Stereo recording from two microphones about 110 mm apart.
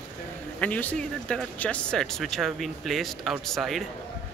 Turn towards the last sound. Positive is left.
turn(degrees=0)  # may be behind; listen again after turning